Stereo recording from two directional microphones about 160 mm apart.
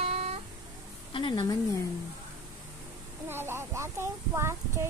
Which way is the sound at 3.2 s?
15° right (ahead or behind).